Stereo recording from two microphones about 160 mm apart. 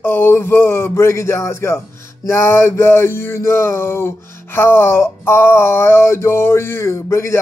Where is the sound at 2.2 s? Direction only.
15° left (ahead or behind).